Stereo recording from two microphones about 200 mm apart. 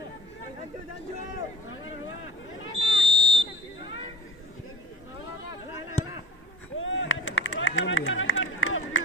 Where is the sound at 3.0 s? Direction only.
55° left (ahead or behind).